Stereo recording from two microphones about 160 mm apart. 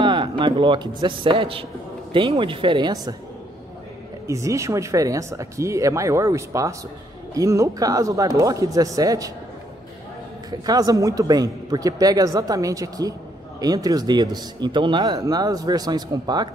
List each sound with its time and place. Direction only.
0.0 s speech: 30° right (ahead or behind)
4.3 s a man's voice: 20° right (ahead or behind)
10.6 s a man's voice: 25° right (ahead or behind)